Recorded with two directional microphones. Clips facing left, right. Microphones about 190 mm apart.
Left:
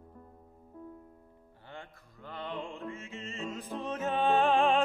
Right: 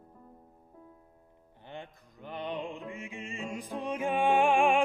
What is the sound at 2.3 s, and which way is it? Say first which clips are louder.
Music: right 3 dB; 15° right (ahead or behind).